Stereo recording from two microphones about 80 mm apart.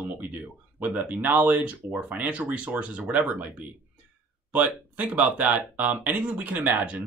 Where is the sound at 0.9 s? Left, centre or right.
Centre.